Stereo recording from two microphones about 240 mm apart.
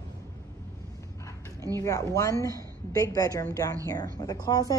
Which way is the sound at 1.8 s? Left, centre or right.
Centre.